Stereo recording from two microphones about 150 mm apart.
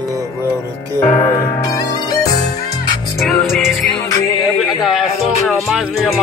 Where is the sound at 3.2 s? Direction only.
Centre (ahead or behind).